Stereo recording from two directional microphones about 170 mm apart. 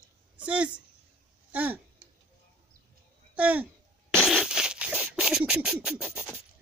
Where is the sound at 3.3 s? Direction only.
10° right (ahead or behind).